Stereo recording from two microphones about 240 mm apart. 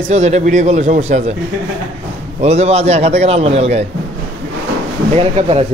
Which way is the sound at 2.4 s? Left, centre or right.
Right.